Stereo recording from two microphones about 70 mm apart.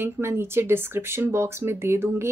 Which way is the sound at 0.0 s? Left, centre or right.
Right.